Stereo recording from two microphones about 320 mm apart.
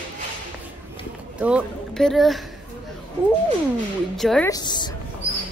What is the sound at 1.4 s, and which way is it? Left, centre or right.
Speech, centre.